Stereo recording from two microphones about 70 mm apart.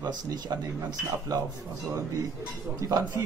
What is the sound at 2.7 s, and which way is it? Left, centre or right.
Speech, right.